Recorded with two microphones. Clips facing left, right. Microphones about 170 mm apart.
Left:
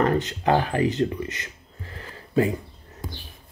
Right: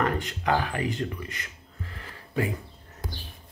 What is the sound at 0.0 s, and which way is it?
Speech, 30° left (ahead or behind).